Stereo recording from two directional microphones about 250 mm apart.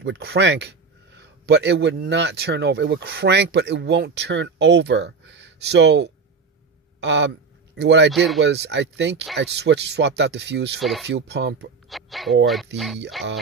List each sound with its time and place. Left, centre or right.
0.0 s speech: right
10.8 s speech: centre
11.1 s speech: right
11.9 s speech: centre